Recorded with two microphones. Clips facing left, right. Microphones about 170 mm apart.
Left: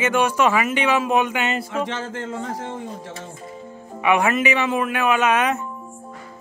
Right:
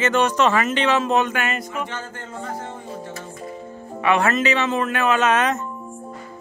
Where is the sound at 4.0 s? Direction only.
15° left (ahead or behind).